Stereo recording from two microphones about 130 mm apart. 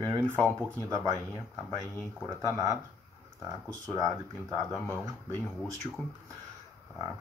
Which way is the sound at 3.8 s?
25° right (ahead or behind).